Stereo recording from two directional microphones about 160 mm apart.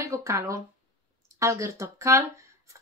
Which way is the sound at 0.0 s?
20° right (ahead or behind).